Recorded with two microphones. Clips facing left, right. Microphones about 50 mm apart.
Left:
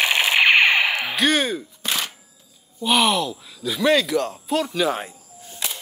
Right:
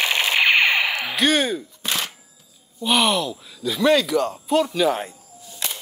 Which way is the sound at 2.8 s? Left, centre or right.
Centre.